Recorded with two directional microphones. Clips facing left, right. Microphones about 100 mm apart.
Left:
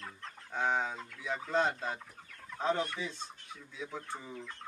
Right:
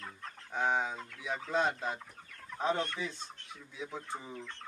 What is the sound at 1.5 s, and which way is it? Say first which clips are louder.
Speech: even; 15° right (ahead or behind).